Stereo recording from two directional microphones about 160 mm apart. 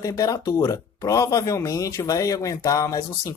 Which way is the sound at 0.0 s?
20° left (ahead or behind).